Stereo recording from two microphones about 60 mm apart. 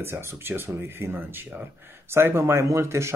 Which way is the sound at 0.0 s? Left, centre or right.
Right.